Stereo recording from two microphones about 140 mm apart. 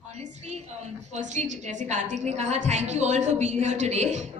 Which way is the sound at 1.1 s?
55° right (ahead or behind).